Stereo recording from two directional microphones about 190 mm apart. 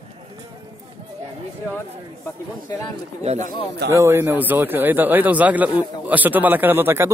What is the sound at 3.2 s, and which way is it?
Speech, 35° right (ahead or behind).